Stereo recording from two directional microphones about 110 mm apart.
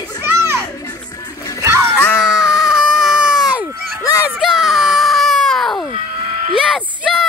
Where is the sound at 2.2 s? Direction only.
5° right (ahead or behind).